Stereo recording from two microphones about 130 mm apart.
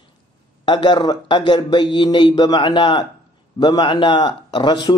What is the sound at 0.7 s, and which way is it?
Speech, 40° left (ahead or behind).